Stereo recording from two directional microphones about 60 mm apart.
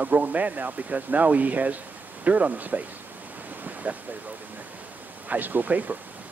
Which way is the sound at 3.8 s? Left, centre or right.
Right.